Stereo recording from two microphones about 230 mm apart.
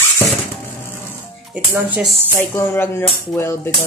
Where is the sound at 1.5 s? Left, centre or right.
Centre.